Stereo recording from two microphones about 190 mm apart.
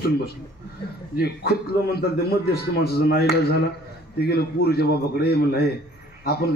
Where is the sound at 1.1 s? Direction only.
55° left (ahead or behind).